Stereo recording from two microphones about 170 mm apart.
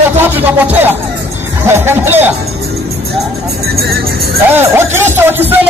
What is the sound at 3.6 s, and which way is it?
Vehicle, 65° right (ahead or behind).